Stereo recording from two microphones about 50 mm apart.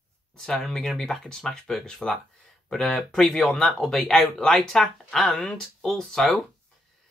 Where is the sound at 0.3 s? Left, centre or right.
Centre.